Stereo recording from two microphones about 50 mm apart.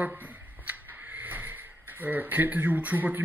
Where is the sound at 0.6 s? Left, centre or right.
Right.